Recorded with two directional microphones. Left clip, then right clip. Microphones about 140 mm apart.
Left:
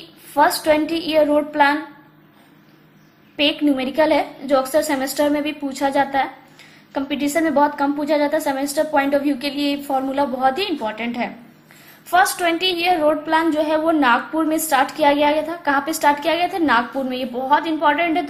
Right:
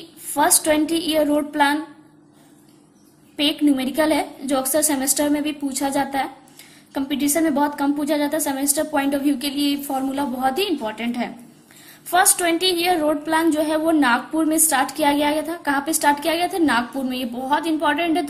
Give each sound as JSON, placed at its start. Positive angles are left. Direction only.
{"t": 0.3, "sound": "a woman's voice", "side_deg": -35}
{"t": 3.3, "sound": "a woman's voice", "side_deg": -30}
{"t": 12.4, "sound": "a woman's voice", "side_deg": -35}